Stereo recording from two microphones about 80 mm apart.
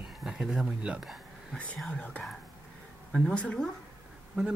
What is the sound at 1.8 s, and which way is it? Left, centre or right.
A woman's voice, centre.